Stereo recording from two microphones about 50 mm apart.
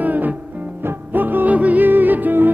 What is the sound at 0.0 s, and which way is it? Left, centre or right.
Music, right.